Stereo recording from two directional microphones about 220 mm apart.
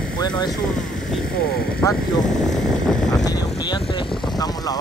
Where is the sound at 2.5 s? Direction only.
5° left (ahead or behind).